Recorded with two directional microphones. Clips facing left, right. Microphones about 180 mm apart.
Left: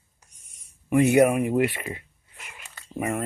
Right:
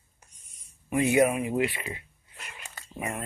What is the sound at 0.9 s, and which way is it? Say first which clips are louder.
Speech: left 5 dB; 60° left (ahead or behind).